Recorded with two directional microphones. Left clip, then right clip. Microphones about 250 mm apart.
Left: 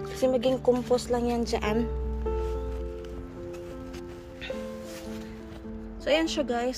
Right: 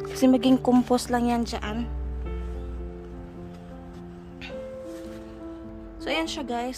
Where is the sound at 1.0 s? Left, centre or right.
Centre.